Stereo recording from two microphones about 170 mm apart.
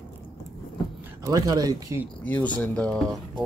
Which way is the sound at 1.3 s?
20° right (ahead or behind).